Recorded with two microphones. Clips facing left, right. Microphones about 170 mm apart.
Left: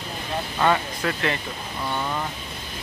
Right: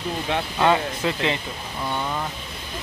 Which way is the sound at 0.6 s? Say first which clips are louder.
Right 1 dB; 15° right (ahead or behind).